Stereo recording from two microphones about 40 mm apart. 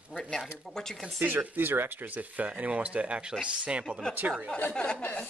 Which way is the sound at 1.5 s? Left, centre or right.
Right.